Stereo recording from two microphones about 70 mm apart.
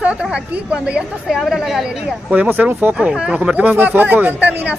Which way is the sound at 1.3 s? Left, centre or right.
Centre.